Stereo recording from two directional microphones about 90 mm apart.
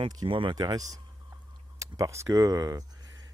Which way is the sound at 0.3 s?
70° right (ahead or behind).